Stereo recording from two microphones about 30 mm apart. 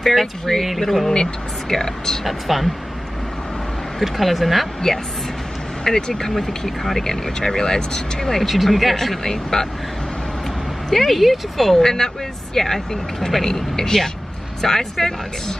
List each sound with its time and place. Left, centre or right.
0.0 s speech: centre
1.1 s speech: centre
2.2 s speech: centre
4.2 s speech: centre
5.9 s speech: centre
7.1 s speech: centre
8.5 s speech: centre
9.2 s speech: centre
10.9 s speech: centre
11.1 s speech: centre
11.8 s speech: centre